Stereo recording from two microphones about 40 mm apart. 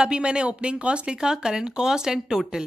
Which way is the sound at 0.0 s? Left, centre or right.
Right.